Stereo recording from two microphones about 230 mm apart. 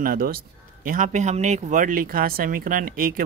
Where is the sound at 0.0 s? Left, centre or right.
Right.